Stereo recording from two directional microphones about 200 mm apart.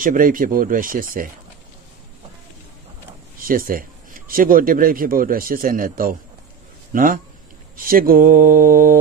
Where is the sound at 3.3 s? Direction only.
45° right (ahead or behind).